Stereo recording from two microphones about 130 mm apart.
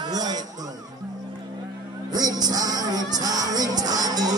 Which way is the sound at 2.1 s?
30° right (ahead or behind).